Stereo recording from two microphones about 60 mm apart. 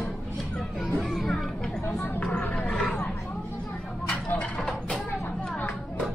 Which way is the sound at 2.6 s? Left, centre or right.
Left.